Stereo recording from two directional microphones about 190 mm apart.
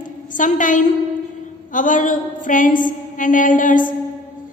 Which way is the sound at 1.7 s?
45° left (ahead or behind).